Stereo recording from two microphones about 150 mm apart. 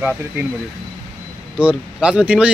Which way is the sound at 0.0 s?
10° right (ahead or behind).